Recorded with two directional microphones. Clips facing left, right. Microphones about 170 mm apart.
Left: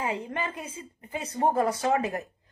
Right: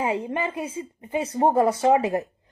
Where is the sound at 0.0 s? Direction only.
30° right (ahead or behind).